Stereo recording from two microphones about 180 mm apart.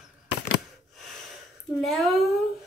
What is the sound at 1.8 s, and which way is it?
Speech, centre (ahead or behind).